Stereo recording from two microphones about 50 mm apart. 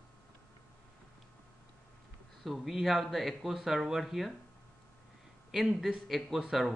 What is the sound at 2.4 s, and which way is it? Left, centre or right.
Speech, centre.